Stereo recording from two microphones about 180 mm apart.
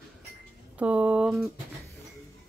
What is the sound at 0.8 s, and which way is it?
Speech, 5° right (ahead or behind).